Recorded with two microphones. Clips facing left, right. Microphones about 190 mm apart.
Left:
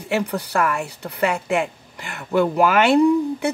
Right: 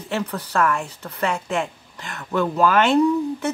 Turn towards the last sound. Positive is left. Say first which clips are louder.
# left 2 dB
turn(degrees=10)  # may be behind; listen again after turning